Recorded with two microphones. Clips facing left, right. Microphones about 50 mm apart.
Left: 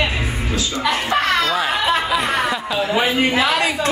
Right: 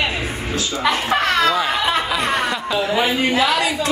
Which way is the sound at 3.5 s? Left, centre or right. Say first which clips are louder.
Left 1 dB; left.